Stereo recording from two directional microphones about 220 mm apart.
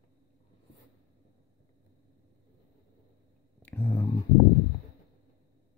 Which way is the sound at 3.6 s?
10° left (ahead or behind).